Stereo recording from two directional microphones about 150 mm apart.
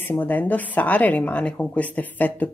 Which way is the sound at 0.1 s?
10° left (ahead or behind).